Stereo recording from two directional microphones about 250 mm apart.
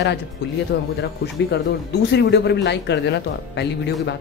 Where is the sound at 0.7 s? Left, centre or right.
Left.